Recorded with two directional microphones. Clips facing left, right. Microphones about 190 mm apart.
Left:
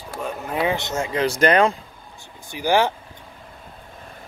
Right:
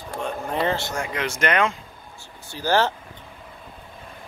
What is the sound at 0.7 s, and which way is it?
Speech, 20° left (ahead or behind).